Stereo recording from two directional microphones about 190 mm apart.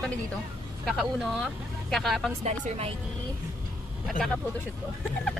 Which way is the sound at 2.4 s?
35° right (ahead or behind).